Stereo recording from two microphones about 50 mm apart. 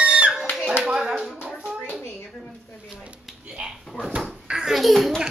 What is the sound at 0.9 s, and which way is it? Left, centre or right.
Clapping, centre.